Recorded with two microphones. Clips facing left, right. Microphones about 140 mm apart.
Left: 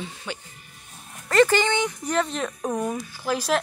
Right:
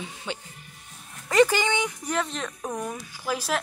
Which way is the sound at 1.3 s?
10° right (ahead or behind).